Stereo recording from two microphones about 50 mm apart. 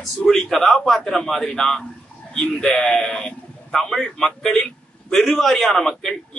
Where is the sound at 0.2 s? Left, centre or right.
Centre.